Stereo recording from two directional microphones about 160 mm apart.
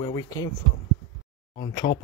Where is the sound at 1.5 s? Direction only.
30° left (ahead or behind).